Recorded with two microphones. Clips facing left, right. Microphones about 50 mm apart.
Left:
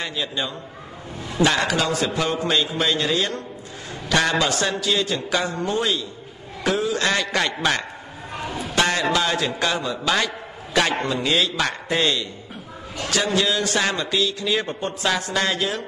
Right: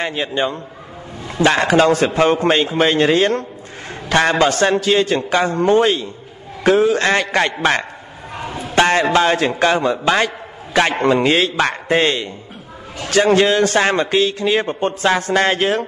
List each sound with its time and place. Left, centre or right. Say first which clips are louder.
0.0 s a man's voice: right 7 dB; right
8.4 s a sound: right 2 dB; right
8.7 s a man's voice: right 7 dB; right
11.0 s a man's voice: right 7 dB; right